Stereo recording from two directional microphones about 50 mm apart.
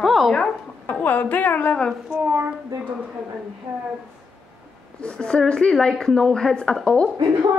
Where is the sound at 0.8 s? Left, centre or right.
Left.